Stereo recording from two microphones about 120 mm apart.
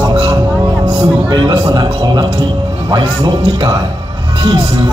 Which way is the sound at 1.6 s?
30° right (ahead or behind).